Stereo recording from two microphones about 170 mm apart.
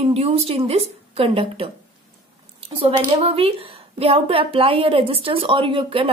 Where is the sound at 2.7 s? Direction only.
35° right (ahead or behind).